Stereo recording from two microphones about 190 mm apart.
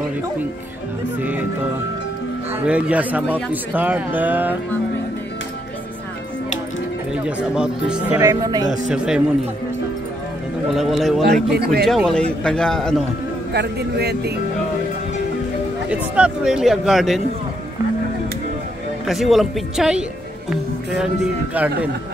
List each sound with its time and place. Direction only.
2.5 s speech: 5° right (ahead or behind)
7.2 s speech: 5° right (ahead or behind)
8.2 s speech: 20° right (ahead or behind)
8.9 s speech: 5° right (ahead or behind)
10.7 s speech: centre (ahead or behind)
11.5 s speech: 55° right (ahead or behind)
11.8 s speech: centre (ahead or behind)
13.5 s speech: 60° right (ahead or behind)
15.9 s speech: 5° right (ahead or behind)
19.0 s speech: centre (ahead or behind)